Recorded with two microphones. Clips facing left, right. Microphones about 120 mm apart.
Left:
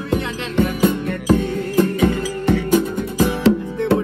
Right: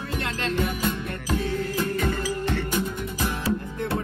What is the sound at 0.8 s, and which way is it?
Music, 65° left (ahead or behind).